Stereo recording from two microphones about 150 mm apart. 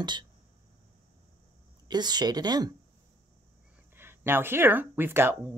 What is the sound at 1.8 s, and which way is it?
Speech, 30° right (ahead or behind).